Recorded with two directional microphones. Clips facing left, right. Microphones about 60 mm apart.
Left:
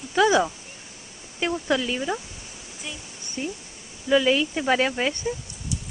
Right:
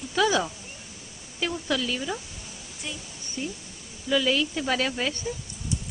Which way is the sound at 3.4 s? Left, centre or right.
Left.